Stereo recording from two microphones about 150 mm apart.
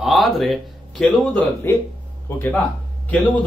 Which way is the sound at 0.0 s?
Centre (ahead or behind).